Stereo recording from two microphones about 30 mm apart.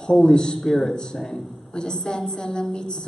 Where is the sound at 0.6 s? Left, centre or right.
Centre.